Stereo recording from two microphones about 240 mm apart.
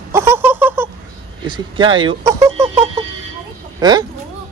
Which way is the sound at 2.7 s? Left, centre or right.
Right.